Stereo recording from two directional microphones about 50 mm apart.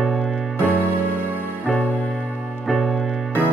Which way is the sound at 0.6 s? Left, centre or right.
Left.